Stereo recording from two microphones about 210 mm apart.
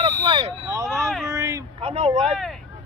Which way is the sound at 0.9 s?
Centre (ahead or behind).